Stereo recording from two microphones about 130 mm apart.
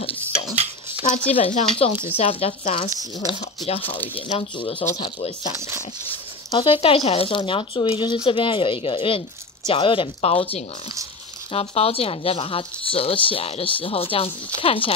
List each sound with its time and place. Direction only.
1.1 s speech: 50° left (ahead or behind)
2.9 s speech: 30° right (ahead or behind)
3.3 s speech: 50° left (ahead or behind)
6.5 s speech: 40° left (ahead or behind)